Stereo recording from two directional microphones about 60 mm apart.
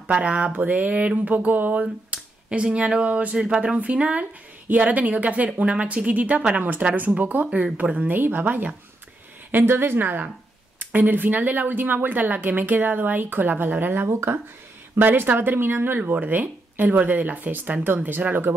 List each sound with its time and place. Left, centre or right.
0.0 s a woman's voice: right
8.1 s speech: right
14.0 s speech: right